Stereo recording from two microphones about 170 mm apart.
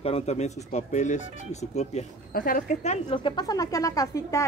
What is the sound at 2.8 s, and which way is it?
Speech, 35° left (ahead or behind).